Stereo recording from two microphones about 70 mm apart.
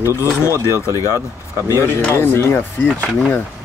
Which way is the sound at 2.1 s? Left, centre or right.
Left.